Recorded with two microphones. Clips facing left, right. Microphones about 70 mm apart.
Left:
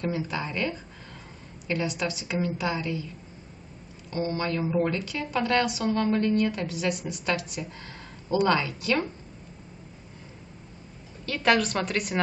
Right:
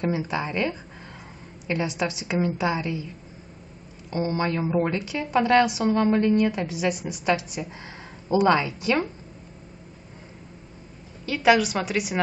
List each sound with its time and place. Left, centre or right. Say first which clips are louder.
0.0 s a woman's voice: right 4 dB; centre
4.1 s a woman's voice: right 3 dB; right
11.2 s a woman's voice: right 4 dB; centre